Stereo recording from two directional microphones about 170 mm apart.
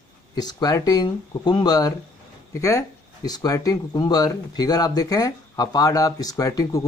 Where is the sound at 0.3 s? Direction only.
25° left (ahead or behind).